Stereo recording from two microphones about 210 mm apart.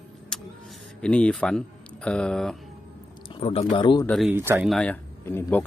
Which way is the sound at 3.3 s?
25° left (ahead or behind).